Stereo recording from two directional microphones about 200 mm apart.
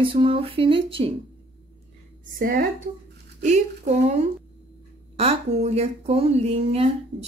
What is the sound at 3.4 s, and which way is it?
Speech, 35° right (ahead or behind).